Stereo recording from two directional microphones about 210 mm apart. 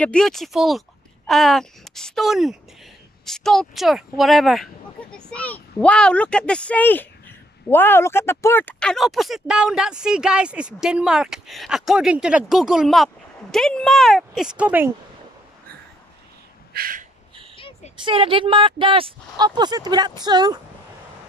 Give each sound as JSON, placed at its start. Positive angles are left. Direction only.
{"t": 0.0, "sound": "a child's voice", "side_deg": 5}
{"t": 16.7, "sound": "gasp", "side_deg": -45}
{"t": 17.6, "sound": "a sound", "side_deg": 25}
{"t": 18.0, "sound": "speech", "side_deg": -25}